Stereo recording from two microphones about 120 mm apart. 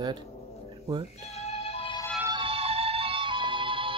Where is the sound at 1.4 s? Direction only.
60° left (ahead or behind).